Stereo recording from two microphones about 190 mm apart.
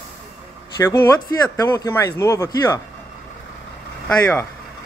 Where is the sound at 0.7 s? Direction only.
15° left (ahead or behind).